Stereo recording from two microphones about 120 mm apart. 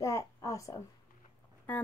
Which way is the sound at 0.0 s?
25° left (ahead or behind).